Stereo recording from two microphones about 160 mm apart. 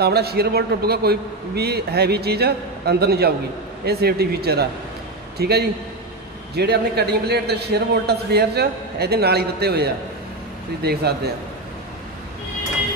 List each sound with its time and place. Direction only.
0.0 s a man's voice: 80° right